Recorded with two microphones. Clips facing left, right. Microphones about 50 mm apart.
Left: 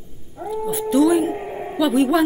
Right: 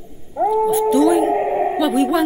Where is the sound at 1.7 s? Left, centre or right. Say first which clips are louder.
Left 5 dB; centre.